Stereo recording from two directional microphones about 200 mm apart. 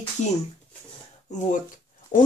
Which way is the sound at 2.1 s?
40° left (ahead or behind).